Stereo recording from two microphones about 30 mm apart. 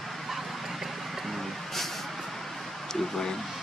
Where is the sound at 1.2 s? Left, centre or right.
Centre.